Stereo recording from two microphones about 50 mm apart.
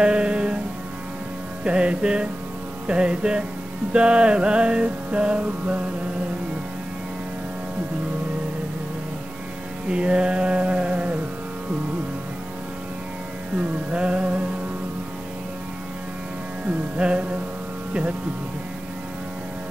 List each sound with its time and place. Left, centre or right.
0.0 s music: right
1.6 s music: right
9.8 s a sound: right
13.9 s music: right
17.0 s music: right